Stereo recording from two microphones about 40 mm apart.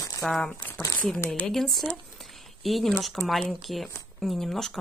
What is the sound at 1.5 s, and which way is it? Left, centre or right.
Speech, centre.